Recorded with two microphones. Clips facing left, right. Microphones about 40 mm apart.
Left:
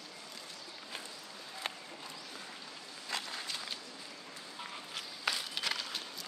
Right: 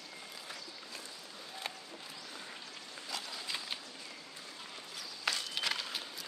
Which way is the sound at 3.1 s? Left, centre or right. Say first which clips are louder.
Left 3 dB; left.